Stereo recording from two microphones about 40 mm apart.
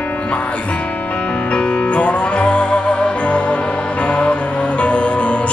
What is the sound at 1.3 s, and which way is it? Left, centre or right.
Music, left.